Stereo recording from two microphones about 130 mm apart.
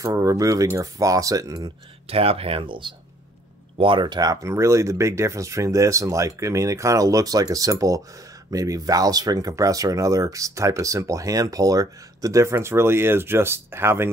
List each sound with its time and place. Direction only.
0.0 s speech: 25° right (ahead or behind)
2.0 s speech: 50° right (ahead or behind); by 14.1 s 20° right (ahead or behind)